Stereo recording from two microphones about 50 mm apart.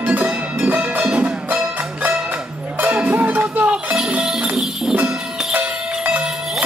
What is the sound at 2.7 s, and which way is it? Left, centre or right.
Music, right.